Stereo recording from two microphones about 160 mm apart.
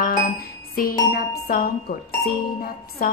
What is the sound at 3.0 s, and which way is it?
Speech, 60° left (ahead or behind).